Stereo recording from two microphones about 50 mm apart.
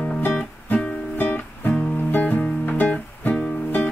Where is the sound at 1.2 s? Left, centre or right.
Left.